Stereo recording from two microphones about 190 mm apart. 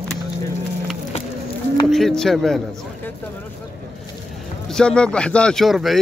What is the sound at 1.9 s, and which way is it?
Speech, centre (ahead or behind).